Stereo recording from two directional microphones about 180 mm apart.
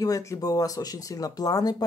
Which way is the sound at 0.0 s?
20° left (ahead or behind).